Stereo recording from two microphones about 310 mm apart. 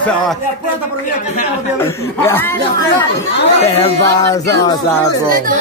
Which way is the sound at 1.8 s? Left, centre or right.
Centre.